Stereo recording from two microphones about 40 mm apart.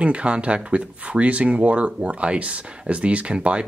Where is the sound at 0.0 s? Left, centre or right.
Right.